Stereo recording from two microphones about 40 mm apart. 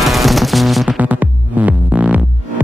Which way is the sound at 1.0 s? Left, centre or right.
Right.